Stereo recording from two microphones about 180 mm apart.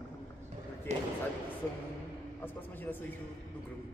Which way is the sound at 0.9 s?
40° right (ahead or behind).